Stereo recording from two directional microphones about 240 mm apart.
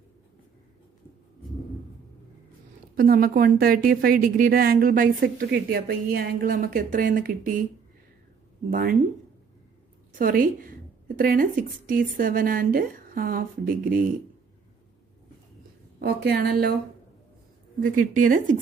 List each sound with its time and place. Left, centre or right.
3.0 s a woman's voice: right
8.6 s a woman's voice: right
10.1 s a woman's voice: right
16.0 s a woman's voice: right
18.1 s a woman's voice: right